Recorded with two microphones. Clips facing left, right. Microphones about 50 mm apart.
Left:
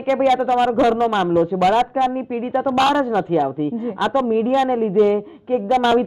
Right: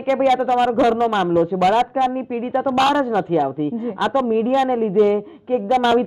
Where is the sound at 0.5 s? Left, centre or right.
Centre.